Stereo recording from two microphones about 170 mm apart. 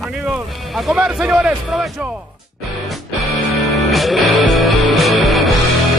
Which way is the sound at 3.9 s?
Centre (ahead or behind).